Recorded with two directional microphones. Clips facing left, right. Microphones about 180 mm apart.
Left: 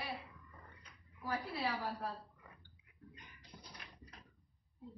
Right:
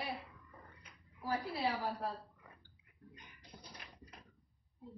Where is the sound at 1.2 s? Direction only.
35° right (ahead or behind).